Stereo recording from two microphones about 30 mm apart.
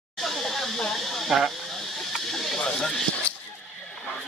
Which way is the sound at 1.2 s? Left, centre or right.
Centre.